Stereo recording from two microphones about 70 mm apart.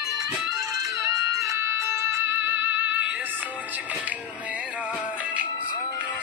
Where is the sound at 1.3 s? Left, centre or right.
Right.